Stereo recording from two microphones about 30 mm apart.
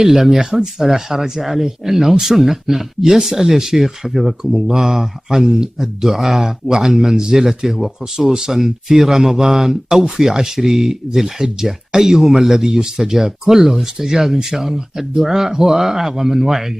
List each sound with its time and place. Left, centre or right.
0.0 s speech: centre